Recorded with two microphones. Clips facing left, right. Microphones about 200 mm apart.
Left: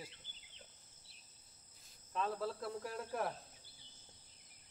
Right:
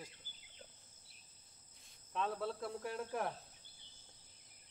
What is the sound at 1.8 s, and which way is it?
Cricket, centre (ahead or behind).